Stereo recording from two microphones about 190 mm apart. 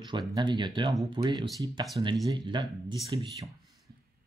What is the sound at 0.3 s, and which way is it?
Speech, 25° right (ahead or behind).